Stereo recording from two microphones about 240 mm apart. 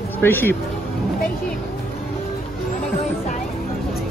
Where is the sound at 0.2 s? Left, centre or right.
Centre.